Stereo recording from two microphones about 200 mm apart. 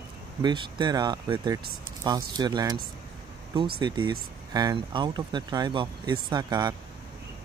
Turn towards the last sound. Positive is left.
turn(degrees=-20)  # may be behind; listen again after turning